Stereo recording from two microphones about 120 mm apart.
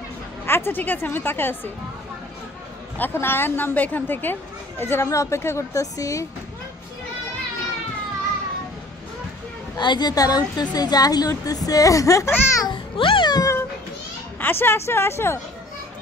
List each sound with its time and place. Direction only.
0.5 s a woman's voice: 20° left (ahead or behind)
3.0 s a woman's voice: 20° left (ahead or behind)
9.8 s a woman's voice: 40° left (ahead or behind)
12.5 s babbling: 40° left (ahead or behind)
14.4 s a woman's voice: 20° left (ahead or behind)